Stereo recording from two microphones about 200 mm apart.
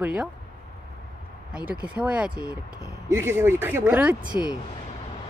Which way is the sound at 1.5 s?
5° right (ahead or behind).